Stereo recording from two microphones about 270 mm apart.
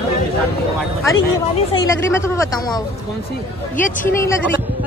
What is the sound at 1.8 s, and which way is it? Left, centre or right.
Speech, centre.